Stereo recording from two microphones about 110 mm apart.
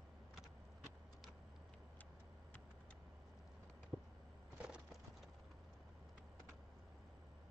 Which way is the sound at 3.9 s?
10° right (ahead or behind).